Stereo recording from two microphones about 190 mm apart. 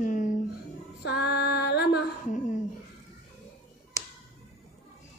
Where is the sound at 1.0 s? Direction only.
60° left (ahead or behind).